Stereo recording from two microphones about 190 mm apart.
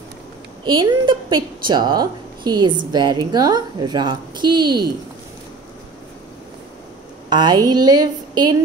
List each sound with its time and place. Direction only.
0.7 s a woman's voice: 25° right (ahead or behind)
7.2 s a woman's voice: 20° right (ahead or behind)